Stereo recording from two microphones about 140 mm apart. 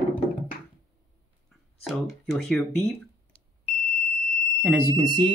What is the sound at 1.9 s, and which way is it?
Speech, centre (ahead or behind).